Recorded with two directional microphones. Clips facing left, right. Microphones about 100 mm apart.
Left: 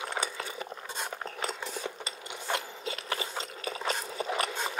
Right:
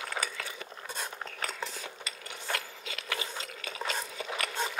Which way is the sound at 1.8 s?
30° left (ahead or behind).